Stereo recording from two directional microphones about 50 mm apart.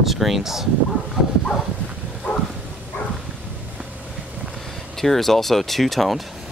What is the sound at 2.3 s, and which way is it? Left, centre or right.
Dog, left.